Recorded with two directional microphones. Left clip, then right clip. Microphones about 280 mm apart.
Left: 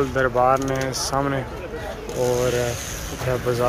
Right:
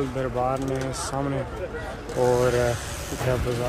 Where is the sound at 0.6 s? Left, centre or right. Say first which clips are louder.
Left 5 dB; right.